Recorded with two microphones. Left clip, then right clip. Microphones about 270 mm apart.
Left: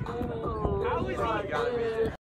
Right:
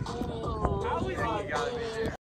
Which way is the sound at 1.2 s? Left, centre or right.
Centre.